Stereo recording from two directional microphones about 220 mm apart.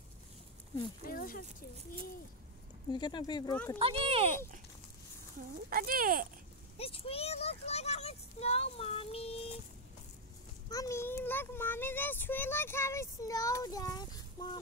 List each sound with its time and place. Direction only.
1.0 s speech: 40° left (ahead or behind)
2.9 s a child's voice: 20° left (ahead or behind)
3.7 s speech: 25° right (ahead or behind)
5.7 s speech: 40° right (ahead or behind)
6.8 s a child's voice: 25° left (ahead or behind)
10.7 s a child's voice: 15° left (ahead or behind)